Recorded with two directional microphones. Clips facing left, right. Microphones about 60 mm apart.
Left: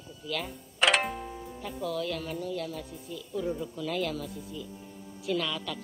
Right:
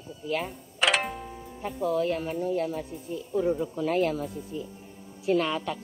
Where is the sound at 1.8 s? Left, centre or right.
Right.